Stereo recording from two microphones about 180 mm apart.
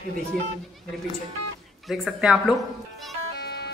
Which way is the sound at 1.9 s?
Centre (ahead or behind).